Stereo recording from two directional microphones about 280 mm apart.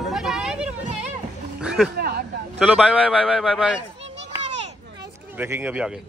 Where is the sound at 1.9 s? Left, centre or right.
Right.